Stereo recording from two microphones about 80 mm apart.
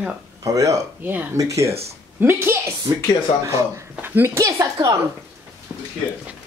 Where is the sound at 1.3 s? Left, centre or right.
Right.